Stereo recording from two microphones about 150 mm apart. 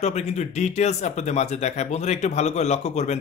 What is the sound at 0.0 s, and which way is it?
Speech, 50° left (ahead or behind).